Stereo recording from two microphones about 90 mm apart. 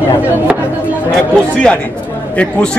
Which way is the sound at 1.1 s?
10° left (ahead or behind).